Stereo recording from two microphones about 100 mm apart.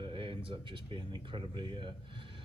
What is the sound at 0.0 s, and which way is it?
A man's voice, 60° right (ahead or behind).